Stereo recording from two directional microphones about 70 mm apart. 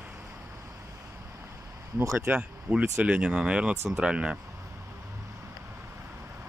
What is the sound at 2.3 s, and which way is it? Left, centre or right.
Speech, centre.